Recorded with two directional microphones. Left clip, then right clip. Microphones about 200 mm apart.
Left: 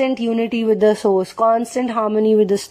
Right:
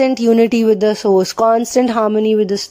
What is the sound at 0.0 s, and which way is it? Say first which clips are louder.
Speech: right 7 dB; 20° right (ahead or behind).